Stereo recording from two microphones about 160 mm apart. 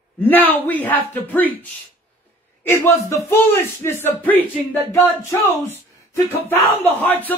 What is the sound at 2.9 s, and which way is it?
Speech, 15° left (ahead or behind).